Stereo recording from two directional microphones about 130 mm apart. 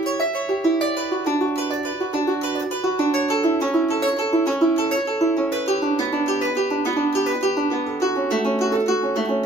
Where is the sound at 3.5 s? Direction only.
15° left (ahead or behind).